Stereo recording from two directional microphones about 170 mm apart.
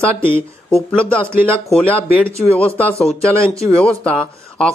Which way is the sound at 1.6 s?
5° left (ahead or behind).